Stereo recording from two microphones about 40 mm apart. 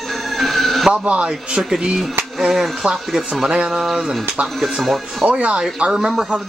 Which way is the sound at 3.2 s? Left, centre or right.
Centre.